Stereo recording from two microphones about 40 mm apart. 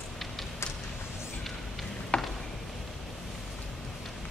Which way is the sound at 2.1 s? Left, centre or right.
Left.